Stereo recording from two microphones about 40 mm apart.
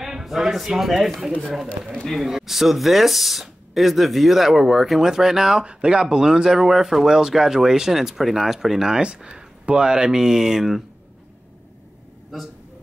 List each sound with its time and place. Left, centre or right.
0.0 s a man's voice: centre